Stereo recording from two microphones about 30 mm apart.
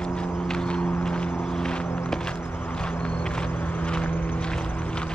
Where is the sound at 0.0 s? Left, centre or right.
Left.